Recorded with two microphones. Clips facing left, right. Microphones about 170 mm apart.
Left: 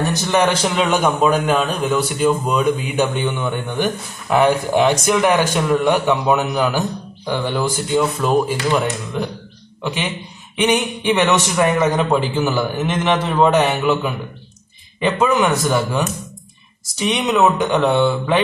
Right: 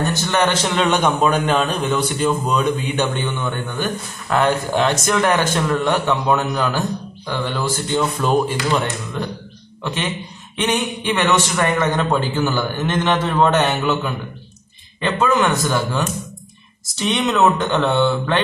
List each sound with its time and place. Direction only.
0.0 s a man's voice: 5° left (ahead or behind)
17.0 s a man's voice: 10° left (ahead or behind)